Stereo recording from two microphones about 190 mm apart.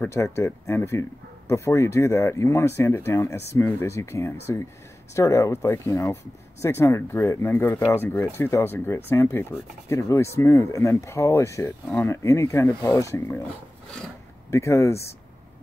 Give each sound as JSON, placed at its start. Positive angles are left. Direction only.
{"t": 0.0, "sound": "speech", "side_deg": 15}
{"t": 14.5, "sound": "speech", "side_deg": 15}